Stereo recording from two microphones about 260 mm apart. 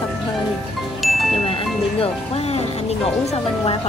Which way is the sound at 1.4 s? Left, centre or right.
Left.